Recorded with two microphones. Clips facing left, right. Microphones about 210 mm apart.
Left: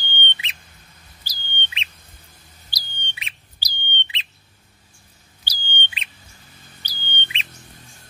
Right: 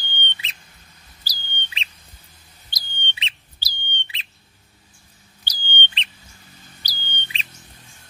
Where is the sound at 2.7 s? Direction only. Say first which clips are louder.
Right 3 dB; 25° right (ahead or behind).